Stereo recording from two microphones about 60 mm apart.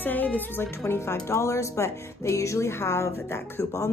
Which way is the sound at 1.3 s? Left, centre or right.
Left.